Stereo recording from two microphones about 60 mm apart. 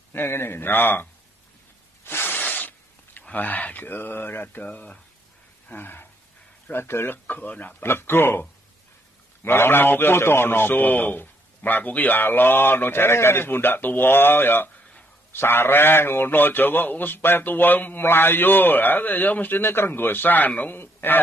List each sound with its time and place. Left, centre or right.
0.1 s a man's voice: left
2.0 s a sound: left
3.3 s a man's voice: left
4.6 s speech: centre
5.7 s a man's voice: left
7.2 s speech: left
7.8 s a man's voice: left